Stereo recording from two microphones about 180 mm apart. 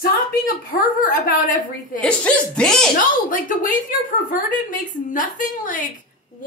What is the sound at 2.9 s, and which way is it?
A woman's voice, 50° left (ahead or behind).